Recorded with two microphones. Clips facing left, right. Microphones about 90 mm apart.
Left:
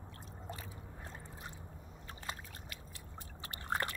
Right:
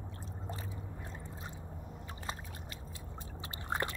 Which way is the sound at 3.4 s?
20° right (ahead or behind).